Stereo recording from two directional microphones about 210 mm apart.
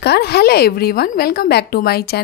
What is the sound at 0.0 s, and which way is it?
A woman's voice, 50° left (ahead or behind).